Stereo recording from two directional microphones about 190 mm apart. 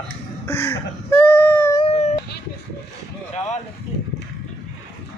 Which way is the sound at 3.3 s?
35° left (ahead or behind).